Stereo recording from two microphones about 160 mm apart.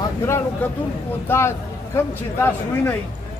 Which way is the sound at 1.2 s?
15° left (ahead or behind).